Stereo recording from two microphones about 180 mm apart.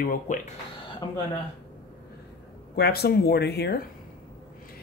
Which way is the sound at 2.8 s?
60° left (ahead or behind).